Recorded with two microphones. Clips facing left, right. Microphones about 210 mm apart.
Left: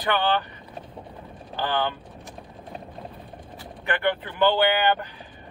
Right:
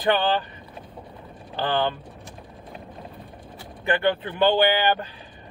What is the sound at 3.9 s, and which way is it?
Speech, 25° right (ahead or behind).